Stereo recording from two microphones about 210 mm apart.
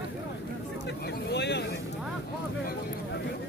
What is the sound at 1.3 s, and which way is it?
Speech, 55° left (ahead or behind).